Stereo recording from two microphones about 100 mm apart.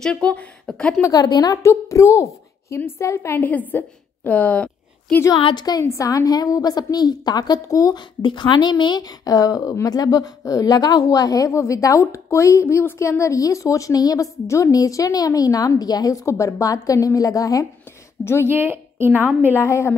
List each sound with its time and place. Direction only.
0.0 s speech: 10° left (ahead or behind)
1.2 s a woman's voice: 45° left (ahead or behind)
1.6 s a woman's voice: 30° left (ahead or behind); by 4.6 s 15° left (ahead or behind)
5.4 s a woman's voice: 50° left (ahead or behind)
5.9 s a woman's voice: 35° left (ahead or behind)
8.2 s a woman's voice: 50° left (ahead or behind)
9.2 s a woman's voice: 35° left (ahead or behind)
18.2 s a woman's voice: 25° left (ahead or behind)
18.5 s a woman's voice: 20° right (ahead or behind)
19.6 s a woman's voice: 30° left (ahead or behind)